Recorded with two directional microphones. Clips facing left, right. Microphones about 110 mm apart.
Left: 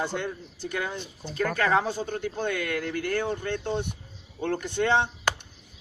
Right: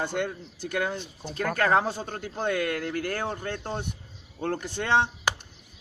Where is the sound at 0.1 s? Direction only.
50° right (ahead or behind).